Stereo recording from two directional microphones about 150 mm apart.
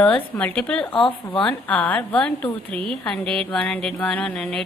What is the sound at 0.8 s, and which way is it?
Speech, 35° left (ahead or behind).